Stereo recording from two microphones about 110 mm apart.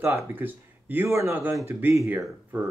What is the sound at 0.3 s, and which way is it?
Speech, 20° right (ahead or behind).